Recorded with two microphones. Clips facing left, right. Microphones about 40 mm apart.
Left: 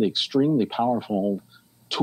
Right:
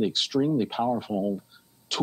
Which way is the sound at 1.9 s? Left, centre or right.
Centre.